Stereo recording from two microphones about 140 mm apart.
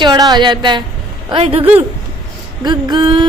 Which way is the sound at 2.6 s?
30° right (ahead or behind).